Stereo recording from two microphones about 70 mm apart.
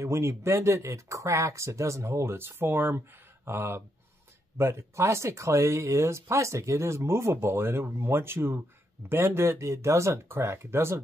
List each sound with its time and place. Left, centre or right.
0.0 s speech: right